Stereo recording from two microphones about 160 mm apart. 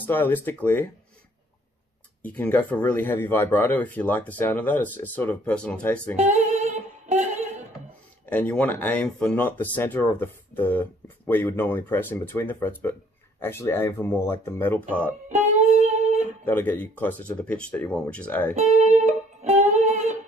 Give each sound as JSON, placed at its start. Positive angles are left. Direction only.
{"t": 0.0, "sound": "speech", "side_deg": 10}
{"t": 2.2, "sound": "speech", "side_deg": 10}
{"t": 6.1, "sound": "female singing", "side_deg": -50}
{"t": 8.3, "sound": "speech", "side_deg": 10}
{"t": 15.2, "sound": "music", "side_deg": -45}
{"t": 15.8, "sound": "guitar", "side_deg": -45}
{"t": 16.4, "sound": "speech", "side_deg": 10}
{"t": 18.5, "sound": "music", "side_deg": -50}